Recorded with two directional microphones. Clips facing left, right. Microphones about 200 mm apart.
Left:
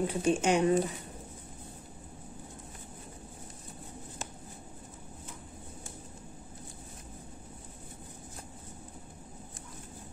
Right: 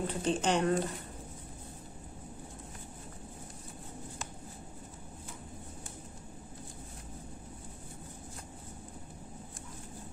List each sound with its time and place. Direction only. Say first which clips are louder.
0.0 s speech: left 3 dB; 10° left (ahead or behind)